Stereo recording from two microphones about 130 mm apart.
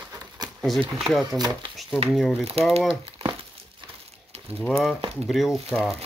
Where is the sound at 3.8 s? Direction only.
50° right (ahead or behind).